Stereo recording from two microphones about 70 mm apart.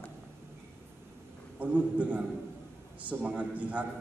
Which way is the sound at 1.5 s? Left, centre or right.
Centre.